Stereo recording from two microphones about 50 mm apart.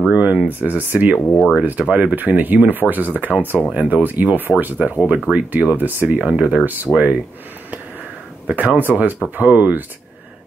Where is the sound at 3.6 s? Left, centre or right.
Right.